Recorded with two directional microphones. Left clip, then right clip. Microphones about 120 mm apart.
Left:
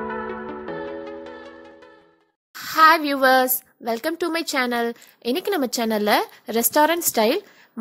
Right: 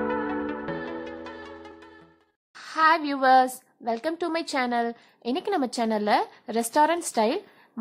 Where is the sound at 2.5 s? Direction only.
25° left (ahead or behind).